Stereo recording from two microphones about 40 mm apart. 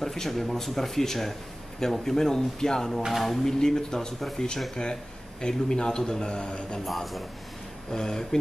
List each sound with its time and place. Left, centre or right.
0.0 s speech: centre
3.1 s speech: centre
3.4 s a man's voice: centre
6.8 s speech: centre
7.9 s speech: centre